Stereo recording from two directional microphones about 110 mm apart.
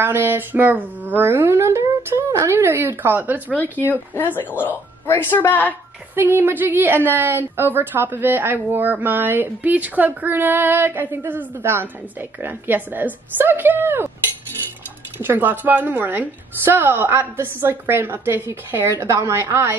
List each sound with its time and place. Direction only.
0.0 s a woman's voice: 20° right (ahead or behind)
3.5 s speech: 15° left (ahead or behind)
6.1 s a woman's voice: 20° right (ahead or behind)
15.1 s a woman's voice: 20° right (ahead or behind)